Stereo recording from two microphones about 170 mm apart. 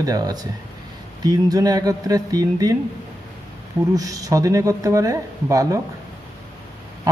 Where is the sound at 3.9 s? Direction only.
20° right (ahead or behind).